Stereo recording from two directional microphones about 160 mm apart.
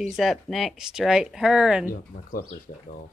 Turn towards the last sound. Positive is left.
turn(degrees=60)  # may be behind; listen again after turning